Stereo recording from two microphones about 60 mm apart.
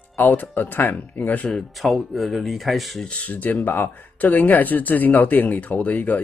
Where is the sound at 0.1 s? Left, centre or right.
Left.